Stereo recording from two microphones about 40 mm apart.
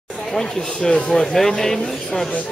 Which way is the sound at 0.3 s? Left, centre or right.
Centre.